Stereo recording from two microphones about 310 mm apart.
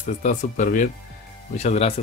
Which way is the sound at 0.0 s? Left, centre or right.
Left.